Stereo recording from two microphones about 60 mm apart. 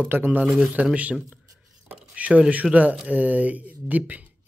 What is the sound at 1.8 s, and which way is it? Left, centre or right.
Stir, right.